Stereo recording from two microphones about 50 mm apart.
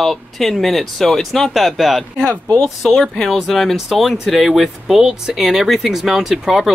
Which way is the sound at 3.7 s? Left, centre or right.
Centre.